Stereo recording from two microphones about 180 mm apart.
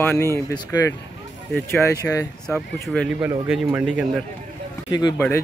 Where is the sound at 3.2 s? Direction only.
5° right (ahead or behind); by 5.4 s 10° left (ahead or behind).